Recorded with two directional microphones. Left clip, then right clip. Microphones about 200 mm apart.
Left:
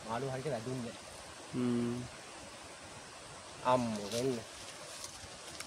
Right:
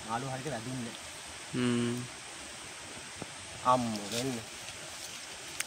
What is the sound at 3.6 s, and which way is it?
Speech, 25° left (ahead or behind).